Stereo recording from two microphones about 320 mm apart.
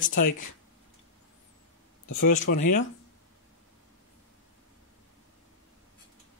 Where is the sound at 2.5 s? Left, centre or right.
Left.